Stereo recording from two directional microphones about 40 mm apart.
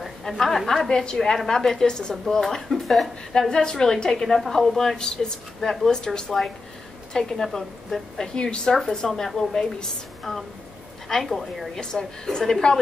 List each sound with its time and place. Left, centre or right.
0.3 s a woman's voice: centre
0.8 s a woman's voice: centre
2.7 s a woman's voice: centre
11.7 s a woman's voice: centre